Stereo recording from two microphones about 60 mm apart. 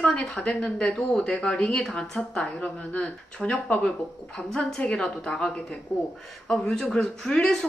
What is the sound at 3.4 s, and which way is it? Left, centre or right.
Speech, centre.